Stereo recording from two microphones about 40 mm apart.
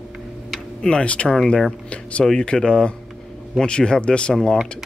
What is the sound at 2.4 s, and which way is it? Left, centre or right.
Speech, left.